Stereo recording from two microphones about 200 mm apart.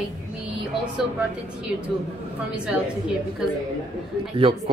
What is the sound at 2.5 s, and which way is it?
Speech, 5° right (ahead or behind).